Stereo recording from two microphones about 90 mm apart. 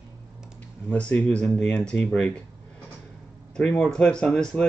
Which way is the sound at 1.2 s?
5° left (ahead or behind).